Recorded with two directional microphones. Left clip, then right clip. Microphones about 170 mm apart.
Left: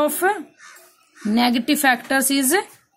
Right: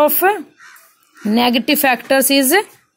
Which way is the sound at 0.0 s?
20° right (ahead or behind).